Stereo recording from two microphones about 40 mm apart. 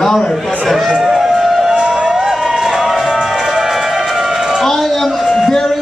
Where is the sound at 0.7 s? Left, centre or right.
Centre.